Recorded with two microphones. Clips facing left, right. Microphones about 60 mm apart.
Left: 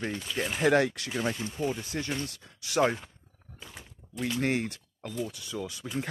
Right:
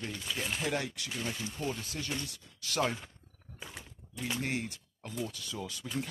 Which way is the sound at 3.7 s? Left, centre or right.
Centre.